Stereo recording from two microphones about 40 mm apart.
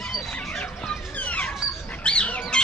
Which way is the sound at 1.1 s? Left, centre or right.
Left.